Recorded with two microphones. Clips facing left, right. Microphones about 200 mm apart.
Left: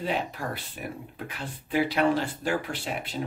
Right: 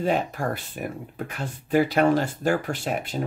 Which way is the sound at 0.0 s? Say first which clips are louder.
Right 6 dB; 45° right (ahead or behind).